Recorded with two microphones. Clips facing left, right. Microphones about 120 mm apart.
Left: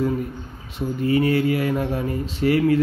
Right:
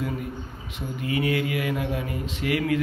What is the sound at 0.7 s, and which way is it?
Speech, 40° left (ahead or behind).